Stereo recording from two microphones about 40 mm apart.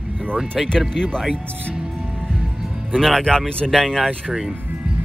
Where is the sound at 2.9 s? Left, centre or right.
Centre.